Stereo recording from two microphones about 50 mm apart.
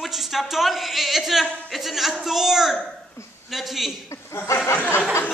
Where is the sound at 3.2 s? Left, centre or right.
Left.